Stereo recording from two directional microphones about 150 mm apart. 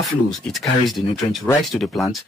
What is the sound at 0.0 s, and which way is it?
Speech, centre (ahead or behind).